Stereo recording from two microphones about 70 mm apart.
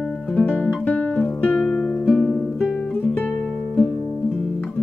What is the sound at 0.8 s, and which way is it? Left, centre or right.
Music, left.